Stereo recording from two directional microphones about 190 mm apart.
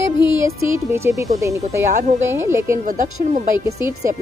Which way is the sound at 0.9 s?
15° right (ahead or behind).